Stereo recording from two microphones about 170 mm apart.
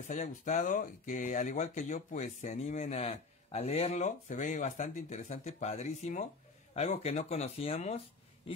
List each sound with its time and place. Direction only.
0.1 s speech: 45° left (ahead or behind)